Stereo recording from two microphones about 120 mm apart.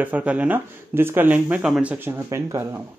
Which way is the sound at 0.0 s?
10° right (ahead or behind).